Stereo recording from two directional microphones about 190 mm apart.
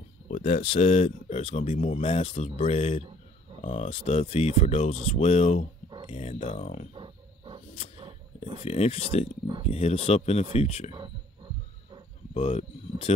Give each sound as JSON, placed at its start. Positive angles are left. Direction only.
{"t": 0.3, "sound": "speech", "side_deg": 40}
{"t": 7.0, "sound": "wild animals", "side_deg": -25}
{"t": 8.6, "sound": "speech", "side_deg": 35}
{"t": 12.4, "sound": "speech", "side_deg": 30}